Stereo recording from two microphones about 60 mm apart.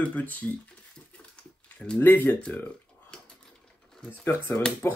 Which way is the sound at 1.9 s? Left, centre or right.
Left.